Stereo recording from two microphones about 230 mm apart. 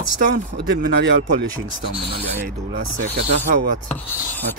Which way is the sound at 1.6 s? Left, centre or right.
Right.